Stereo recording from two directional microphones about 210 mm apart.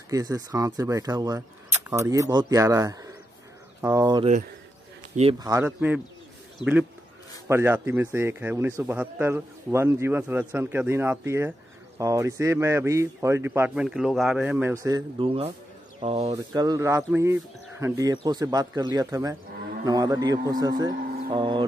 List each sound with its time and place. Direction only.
0.1 s speech: 15° right (ahead or behind)
5.4 s speech: 15° right (ahead or behind)